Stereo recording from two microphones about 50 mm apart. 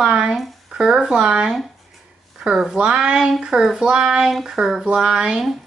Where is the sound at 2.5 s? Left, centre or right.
Centre.